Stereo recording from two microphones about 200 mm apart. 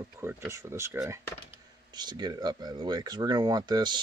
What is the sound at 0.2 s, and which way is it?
Speech, 10° right (ahead or behind).